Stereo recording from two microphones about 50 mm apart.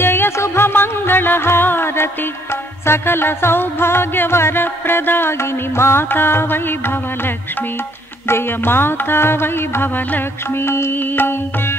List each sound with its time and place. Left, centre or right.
0.0 s music: left
8.3 s music: left